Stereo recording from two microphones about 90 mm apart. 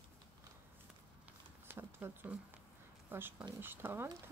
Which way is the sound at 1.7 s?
20° right (ahead or behind).